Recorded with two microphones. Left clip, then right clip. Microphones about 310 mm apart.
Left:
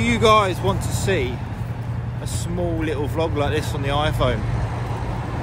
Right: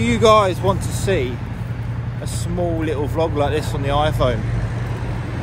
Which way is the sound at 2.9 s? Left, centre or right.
Right.